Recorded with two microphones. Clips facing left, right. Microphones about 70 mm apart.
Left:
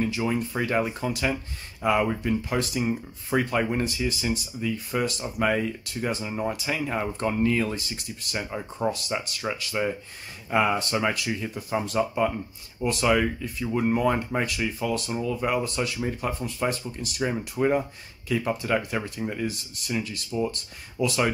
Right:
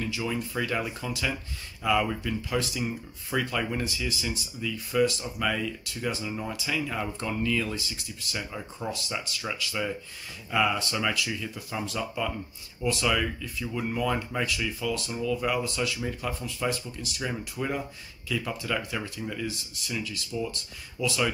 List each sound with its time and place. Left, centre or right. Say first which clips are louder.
0.0 s speech: left 5 dB; left
17.2 s speech: left 7 dB; left